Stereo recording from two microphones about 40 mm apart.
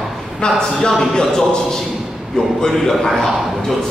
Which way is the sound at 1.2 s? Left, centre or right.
Centre.